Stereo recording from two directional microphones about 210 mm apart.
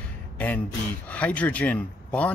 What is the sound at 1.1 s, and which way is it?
Speech, 5° left (ahead or behind).